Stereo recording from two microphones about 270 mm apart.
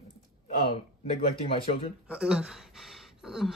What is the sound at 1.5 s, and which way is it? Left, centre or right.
Speech, centre.